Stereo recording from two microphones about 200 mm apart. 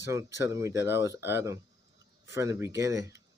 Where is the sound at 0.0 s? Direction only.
15° right (ahead or behind).